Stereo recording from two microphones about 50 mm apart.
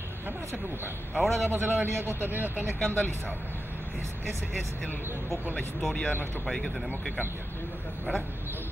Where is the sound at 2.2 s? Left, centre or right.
Right.